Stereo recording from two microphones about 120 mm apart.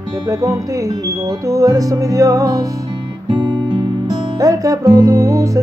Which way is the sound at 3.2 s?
40° right (ahead or behind).